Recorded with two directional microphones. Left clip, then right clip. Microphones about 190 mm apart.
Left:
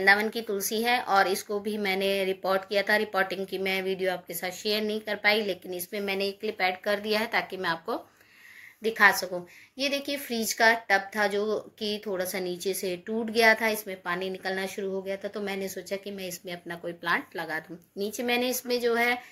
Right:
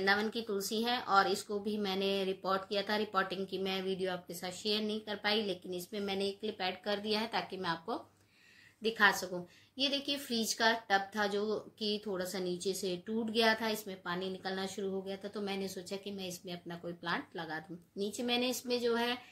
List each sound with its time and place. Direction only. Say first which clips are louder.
0.0 s a woman's voice: left 9 dB; 20° right (ahead or behind)